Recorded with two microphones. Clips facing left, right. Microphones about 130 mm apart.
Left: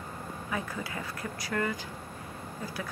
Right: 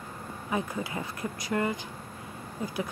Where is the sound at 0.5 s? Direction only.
20° right (ahead or behind).